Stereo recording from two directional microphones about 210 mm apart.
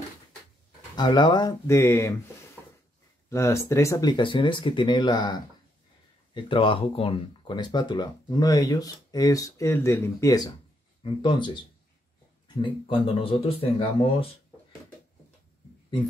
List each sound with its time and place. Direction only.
0.9 s speech: 20° left (ahead or behind)
3.3 s speech: 15° left (ahead or behind)
12.6 s speech: 25° left (ahead or behind)